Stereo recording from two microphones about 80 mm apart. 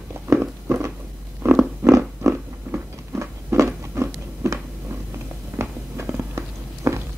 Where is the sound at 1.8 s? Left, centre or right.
Right.